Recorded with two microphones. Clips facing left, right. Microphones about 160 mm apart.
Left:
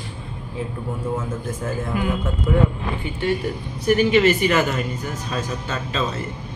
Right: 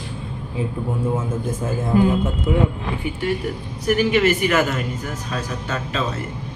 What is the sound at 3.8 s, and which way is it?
Speech, 5° right (ahead or behind).